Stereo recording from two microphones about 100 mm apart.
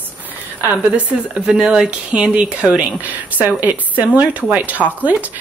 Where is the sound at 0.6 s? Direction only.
10° right (ahead or behind).